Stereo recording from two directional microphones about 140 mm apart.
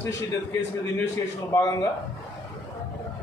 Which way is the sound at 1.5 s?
25° left (ahead or behind).